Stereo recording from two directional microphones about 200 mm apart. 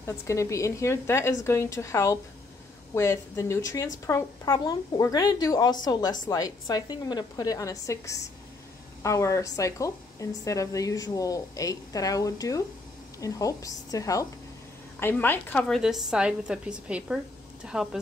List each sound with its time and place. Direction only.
0.0 s a woman's voice: 15° left (ahead or behind); by 17.2 s 5° right (ahead or behind)